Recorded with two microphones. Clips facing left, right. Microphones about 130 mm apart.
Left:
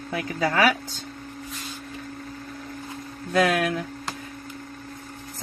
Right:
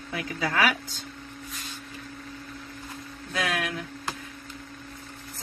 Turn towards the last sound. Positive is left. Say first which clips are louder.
# left 8 dB
turn(degrees=45)  # may be behind; listen again after turning